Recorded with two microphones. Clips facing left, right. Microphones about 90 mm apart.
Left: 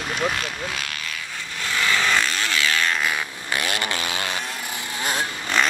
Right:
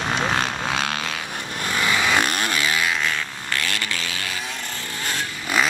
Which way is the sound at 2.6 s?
15° right (ahead or behind).